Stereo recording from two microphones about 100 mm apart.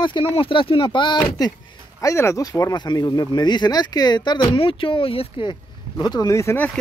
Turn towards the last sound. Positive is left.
turn(degrees=30)  # may be behind; listen again after turning